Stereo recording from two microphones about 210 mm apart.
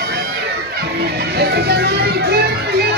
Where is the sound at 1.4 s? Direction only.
50° right (ahead or behind).